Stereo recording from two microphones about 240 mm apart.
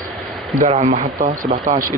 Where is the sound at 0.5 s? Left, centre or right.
Right.